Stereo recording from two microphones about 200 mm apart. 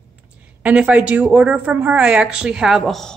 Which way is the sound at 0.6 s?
5° right (ahead or behind).